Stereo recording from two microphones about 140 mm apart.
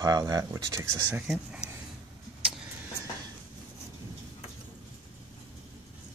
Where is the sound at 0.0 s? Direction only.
25° right (ahead or behind).